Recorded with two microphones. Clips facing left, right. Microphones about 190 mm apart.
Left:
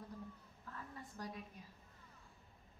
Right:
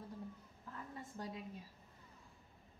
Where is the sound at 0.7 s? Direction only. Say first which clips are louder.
Right 2 dB; 25° right (ahead or behind).